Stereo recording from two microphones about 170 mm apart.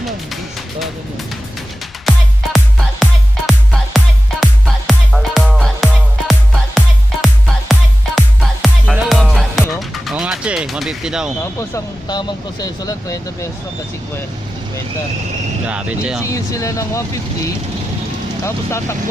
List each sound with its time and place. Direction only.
2.0 s music: centre (ahead or behind)
11.4 s speech: 15° left (ahead or behind)
15.6 s speech: 5° right (ahead or behind)
16.3 s speech: 20° left (ahead or behind)
18.4 s speech: 15° left (ahead or behind)